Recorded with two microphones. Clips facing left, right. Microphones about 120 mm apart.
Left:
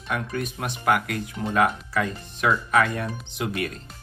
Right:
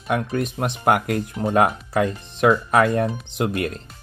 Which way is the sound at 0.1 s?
50° right (ahead or behind).